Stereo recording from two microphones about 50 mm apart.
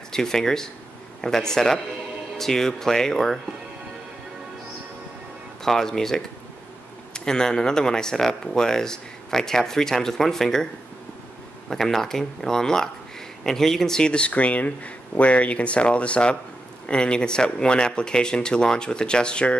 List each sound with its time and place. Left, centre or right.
0.1 s speech: centre
5.6 s speech: centre
11.7 s speech: centre